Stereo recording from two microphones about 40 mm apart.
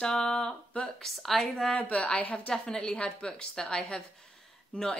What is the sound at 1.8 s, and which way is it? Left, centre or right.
Speech, left.